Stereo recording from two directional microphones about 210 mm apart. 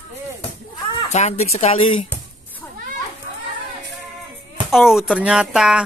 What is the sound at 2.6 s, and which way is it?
Children playing, 10° left (ahead or behind).